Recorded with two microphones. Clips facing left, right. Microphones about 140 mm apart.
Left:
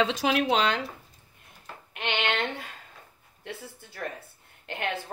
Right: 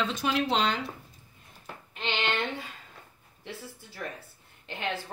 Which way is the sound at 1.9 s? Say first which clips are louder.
Left 2 dB; 60° left (ahead or behind).